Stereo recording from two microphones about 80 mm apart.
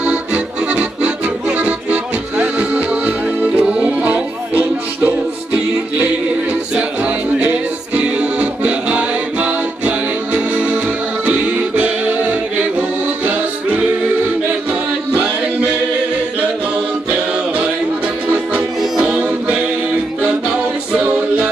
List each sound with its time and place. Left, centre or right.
0.0 s accordion: centre
1.6 s music: centre
18.8 s music: centre
20.9 s music: centre